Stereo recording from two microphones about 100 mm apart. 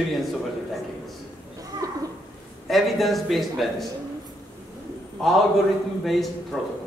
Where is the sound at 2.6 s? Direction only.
Centre (ahead or behind).